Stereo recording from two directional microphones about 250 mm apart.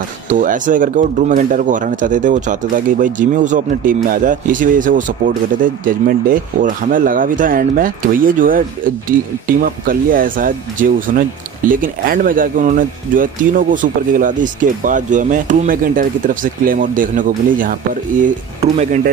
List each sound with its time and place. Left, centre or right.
0.3 s speech: right